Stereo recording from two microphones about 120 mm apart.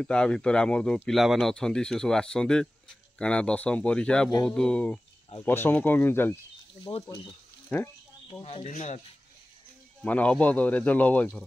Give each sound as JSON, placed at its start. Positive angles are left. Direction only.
{"t": 0.0, "sound": "speech", "side_deg": 5}
{"t": 6.9, "sound": "speech", "side_deg": 40}
{"t": 7.7, "sound": "speech", "side_deg": 10}
{"t": 8.3, "sound": "speech", "side_deg": 45}
{"t": 8.6, "sound": "speech", "side_deg": 70}
{"t": 10.0, "sound": "speech", "side_deg": 10}